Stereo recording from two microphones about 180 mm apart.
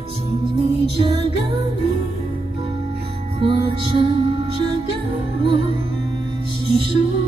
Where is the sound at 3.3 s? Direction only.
30° right (ahead or behind).